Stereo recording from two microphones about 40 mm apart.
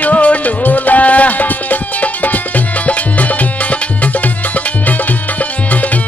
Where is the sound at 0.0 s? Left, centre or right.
Left.